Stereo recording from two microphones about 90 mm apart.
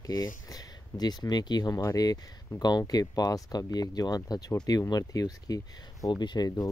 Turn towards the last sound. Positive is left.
turn(degrees=45)  # may be behind; listen again after turning